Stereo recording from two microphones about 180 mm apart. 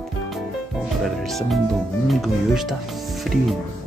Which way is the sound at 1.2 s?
Centre (ahead or behind).